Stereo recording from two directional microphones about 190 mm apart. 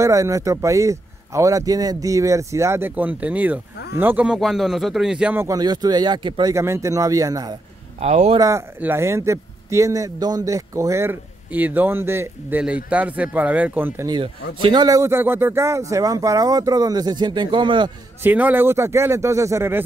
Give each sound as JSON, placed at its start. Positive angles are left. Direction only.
{"t": 0.0, "sound": "a man's voice", "side_deg": -15}
{"t": 8.0, "sound": "speech", "side_deg": -35}
{"t": 8.4, "sound": "a man's voice", "side_deg": -15}
{"t": 18.2, "sound": "a man's voice", "side_deg": -10}